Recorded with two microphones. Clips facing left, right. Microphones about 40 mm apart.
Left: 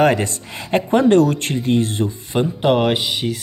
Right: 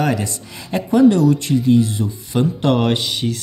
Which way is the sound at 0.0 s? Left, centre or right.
Left.